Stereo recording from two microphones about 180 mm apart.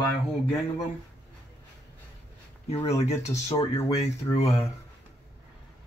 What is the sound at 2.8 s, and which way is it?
Speech, 35° left (ahead or behind).